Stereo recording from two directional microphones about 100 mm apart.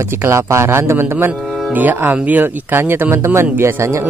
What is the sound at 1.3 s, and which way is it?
Music, centre (ahead or behind).